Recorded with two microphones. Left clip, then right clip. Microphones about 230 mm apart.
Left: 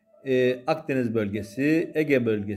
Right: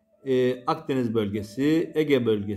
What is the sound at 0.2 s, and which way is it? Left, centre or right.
A man's voice, centre.